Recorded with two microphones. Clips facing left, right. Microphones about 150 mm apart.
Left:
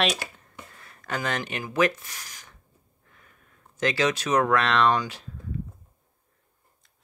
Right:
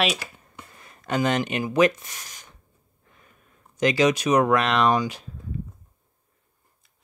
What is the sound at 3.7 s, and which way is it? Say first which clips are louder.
Speech: right 5 dB; 15° right (ahead or behind).